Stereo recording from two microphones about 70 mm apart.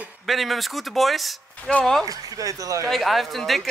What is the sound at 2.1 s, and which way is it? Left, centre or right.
Speech, right.